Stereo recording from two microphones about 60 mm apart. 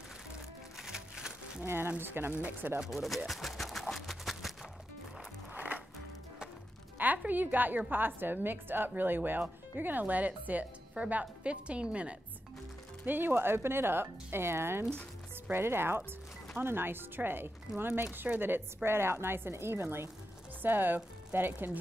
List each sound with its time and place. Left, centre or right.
0.7 s a sound: centre
1.7 s a woman's voice: right
2.9 s speech: centre
3.3 s a sound: centre
5.5 s music: right
7.2 s a woman's voice: right
13.0 s a woman's voice: right